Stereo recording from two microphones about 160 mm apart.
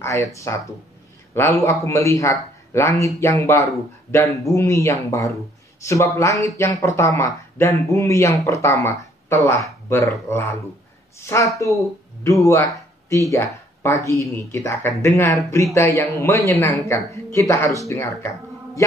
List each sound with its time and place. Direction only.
0.0 s speech: 20° left (ahead or behind)
1.6 s speech: 20° left (ahead or behind)
13.8 s speech: 20° left (ahead or behind)